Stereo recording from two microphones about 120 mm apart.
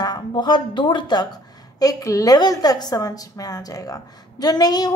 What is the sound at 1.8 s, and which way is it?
A woman's voice, 25° left (ahead or behind).